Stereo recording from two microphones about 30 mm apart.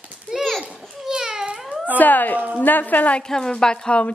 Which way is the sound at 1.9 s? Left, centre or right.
Left.